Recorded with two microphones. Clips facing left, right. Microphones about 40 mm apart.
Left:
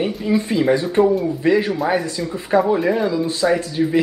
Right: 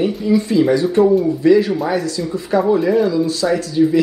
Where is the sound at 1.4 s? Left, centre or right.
Left.